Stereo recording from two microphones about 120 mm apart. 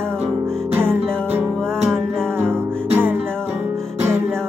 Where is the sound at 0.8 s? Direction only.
20° right (ahead or behind).